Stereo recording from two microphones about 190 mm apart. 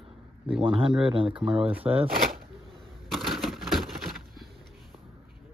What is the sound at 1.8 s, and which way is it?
Speech, 5° right (ahead or behind).